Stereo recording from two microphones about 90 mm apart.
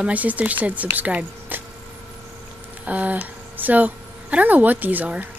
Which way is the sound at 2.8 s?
15° right (ahead or behind).